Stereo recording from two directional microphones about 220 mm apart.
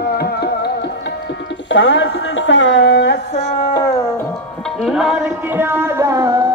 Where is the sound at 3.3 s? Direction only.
30° left (ahead or behind).